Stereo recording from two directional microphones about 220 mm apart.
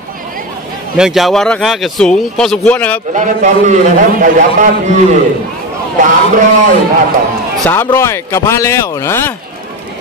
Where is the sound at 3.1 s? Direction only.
35° right (ahead or behind).